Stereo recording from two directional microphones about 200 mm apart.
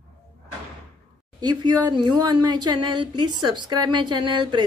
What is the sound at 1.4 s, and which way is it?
Speech, 20° right (ahead or behind).